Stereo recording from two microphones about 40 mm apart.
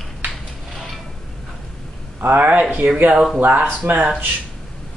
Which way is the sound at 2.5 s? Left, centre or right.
Right.